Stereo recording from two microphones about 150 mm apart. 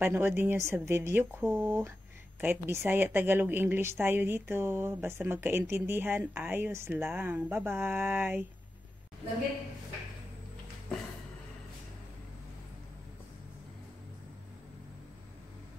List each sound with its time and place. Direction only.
0.0 s a woman's voice: 15° right (ahead or behind)